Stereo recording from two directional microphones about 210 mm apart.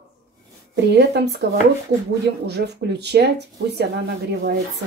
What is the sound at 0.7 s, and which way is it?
Speech, 50° right (ahead or behind).